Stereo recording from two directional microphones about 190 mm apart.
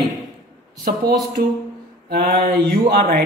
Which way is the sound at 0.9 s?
50° right (ahead or behind).